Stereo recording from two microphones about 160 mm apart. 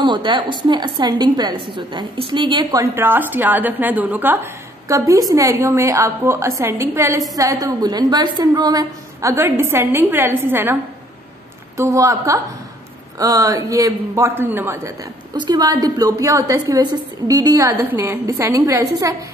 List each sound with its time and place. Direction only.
0.0 s a woman's voice: 30° right (ahead or behind)